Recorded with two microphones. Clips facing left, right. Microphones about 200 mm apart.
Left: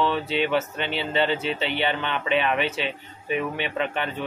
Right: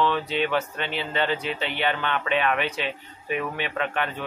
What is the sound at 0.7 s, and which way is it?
Speech, 25° left (ahead or behind).